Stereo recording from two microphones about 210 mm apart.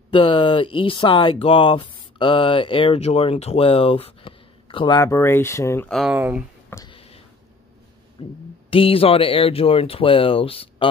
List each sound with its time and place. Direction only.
0.1 s speech: 25° left (ahead or behind)
5.9 s speech: centre (ahead or behind)
6.7 s a sound: 15° left (ahead or behind)
8.2 s speech: 25° left (ahead or behind)